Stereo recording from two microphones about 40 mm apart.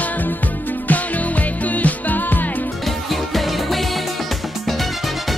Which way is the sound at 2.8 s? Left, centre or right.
Centre.